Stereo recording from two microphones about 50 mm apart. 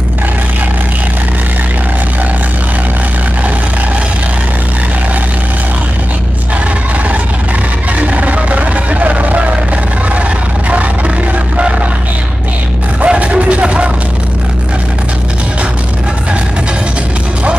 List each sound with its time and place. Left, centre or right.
8.0 s vehicle: right
13.0 s music: right